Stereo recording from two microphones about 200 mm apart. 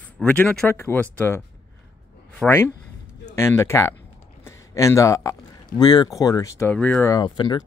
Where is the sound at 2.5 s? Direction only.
10° left (ahead or behind).